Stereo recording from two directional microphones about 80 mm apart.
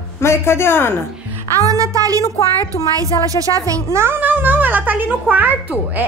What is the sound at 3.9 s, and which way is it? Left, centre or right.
A child's voice, right.